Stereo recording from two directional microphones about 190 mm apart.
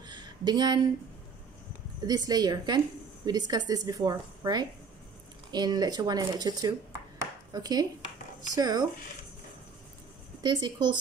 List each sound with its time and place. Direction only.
0.0 s a sound: 20° right (ahead or behind)
2.0 s a woman's voice: 20° right (ahead or behind)
10.4 s a woman's voice: 25° right (ahead or behind)